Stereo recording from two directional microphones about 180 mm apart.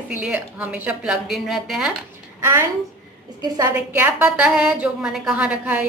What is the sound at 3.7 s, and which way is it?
A woman's voice, 10° right (ahead or behind).